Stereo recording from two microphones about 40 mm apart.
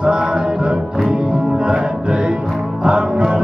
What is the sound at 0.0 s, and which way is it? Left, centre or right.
Music, centre.